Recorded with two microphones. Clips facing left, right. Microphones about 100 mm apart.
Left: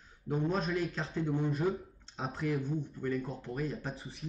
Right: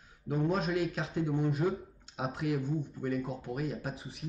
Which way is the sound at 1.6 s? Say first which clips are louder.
Right 1 dB; centre (ahead or behind).